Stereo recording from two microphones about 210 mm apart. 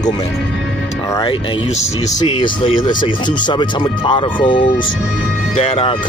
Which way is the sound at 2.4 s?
20° left (ahead or behind).